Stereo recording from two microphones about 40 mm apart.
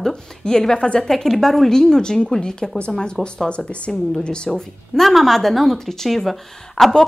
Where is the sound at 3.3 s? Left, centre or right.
Left.